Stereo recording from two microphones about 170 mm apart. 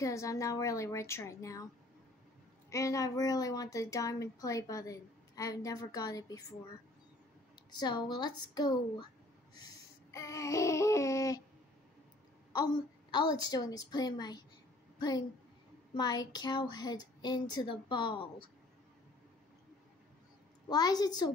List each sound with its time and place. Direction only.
0.0 s speech: 20° left (ahead or behind)
2.7 s speech: 20° left (ahead or behind)
7.7 s speech: 25° left (ahead or behind)
10.1 s a sound: 20° left (ahead or behind)
12.5 s a woman's voice: 25° left (ahead or behind)
20.7 s speech: 25° left (ahead or behind)